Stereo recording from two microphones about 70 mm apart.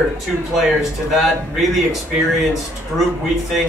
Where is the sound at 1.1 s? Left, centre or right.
Centre.